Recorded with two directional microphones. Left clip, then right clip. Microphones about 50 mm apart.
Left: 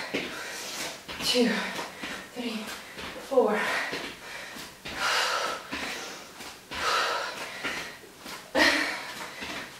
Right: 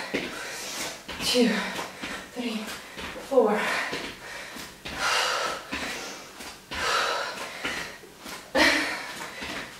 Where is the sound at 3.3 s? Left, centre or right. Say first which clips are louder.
Right 2 dB; centre.